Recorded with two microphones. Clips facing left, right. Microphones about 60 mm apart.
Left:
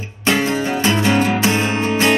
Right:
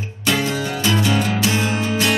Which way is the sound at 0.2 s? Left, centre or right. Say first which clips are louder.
Left 3 dB; left.